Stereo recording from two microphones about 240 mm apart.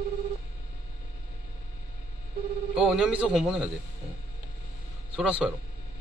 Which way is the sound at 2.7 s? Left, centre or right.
Centre.